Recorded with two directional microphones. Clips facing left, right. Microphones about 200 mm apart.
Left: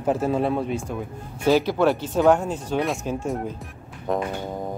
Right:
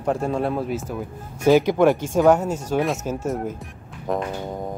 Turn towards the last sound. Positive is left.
turn(degrees=0)  # may be behind; listen again after turning